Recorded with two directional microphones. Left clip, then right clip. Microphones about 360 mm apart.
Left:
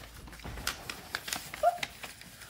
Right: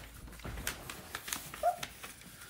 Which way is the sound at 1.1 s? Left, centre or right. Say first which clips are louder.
Left 5 dB; left.